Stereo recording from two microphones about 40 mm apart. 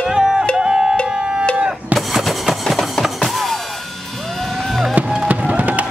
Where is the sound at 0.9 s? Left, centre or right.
Left.